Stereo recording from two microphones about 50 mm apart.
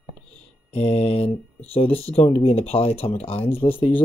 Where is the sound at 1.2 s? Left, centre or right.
Left.